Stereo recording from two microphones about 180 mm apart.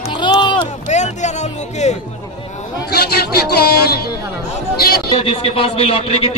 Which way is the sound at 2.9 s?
65° left (ahead or behind).